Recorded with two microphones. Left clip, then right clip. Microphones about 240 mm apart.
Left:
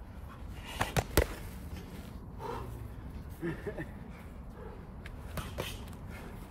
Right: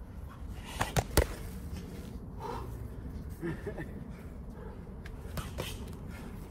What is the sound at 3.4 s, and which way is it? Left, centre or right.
Speech, centre.